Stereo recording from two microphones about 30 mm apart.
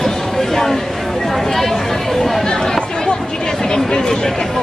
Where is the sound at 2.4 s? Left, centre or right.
Centre.